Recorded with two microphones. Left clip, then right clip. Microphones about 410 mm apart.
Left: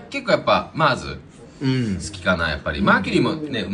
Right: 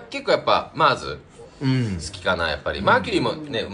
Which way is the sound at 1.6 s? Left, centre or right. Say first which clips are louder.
Left 1 dB; right.